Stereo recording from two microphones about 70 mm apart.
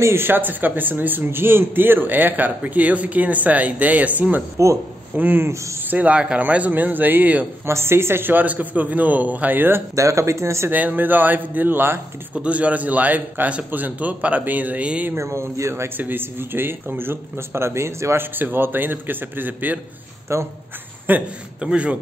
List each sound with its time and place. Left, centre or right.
0.0 s a man's voice: right
4.6 s speech: right
5.1 s a man's voice: right
7.6 s a man's voice: right
9.9 s speech: right
10.7 s a man's voice: right
12.4 s a man's voice: centre
15.1 s speech: right
16.0 s a man's voice: right
20.3 s speech: right
21.1 s a man's voice: centre